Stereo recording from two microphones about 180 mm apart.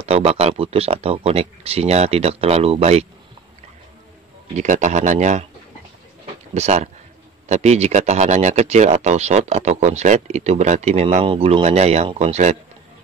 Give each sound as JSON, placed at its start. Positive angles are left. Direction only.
{"t": 0.0, "sound": "speech", "side_deg": -35}
{"t": 4.6, "sound": "speech", "side_deg": -45}
{"t": 6.5, "sound": "speech", "side_deg": -40}